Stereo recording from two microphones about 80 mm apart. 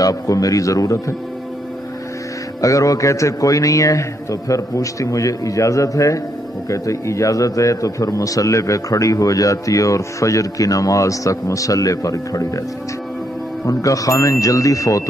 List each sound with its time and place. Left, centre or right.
0.0 s a man's voice: left
2.6 s a man's voice: left
13.7 s a man's voice: left